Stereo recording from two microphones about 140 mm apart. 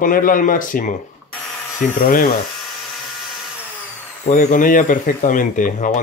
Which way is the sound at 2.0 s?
90° left.